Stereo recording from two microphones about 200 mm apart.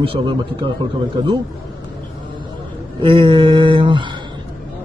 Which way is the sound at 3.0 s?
25° right (ahead or behind).